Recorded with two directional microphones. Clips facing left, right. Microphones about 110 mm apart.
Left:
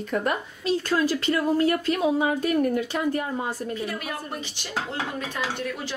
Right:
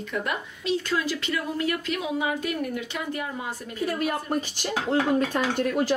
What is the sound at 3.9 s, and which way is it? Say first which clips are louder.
Speech: right 6 dB; 45° right (ahead or behind).